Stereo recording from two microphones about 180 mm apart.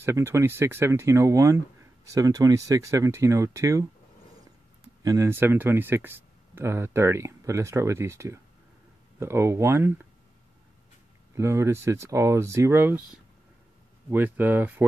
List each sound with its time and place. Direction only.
0.0 s speech: 15° right (ahead or behind)
5.0 s speech: 20° right (ahead or behind)
11.3 s speech: 15° right (ahead or behind)